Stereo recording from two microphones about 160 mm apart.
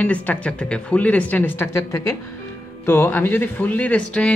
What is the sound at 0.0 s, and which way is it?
Speech, 10° left (ahead or behind).